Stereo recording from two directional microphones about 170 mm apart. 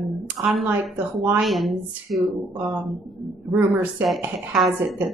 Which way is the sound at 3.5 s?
5° right (ahead or behind).